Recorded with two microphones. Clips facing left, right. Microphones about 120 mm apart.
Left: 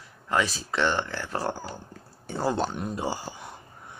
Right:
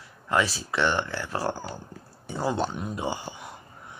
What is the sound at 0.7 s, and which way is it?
Speech, 15° right (ahead or behind).